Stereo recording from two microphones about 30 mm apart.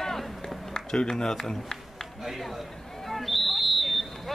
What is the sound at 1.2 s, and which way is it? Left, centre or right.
Speech, centre.